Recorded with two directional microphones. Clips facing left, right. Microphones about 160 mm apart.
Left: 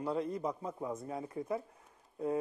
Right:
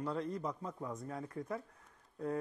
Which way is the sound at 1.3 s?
5° left (ahead or behind).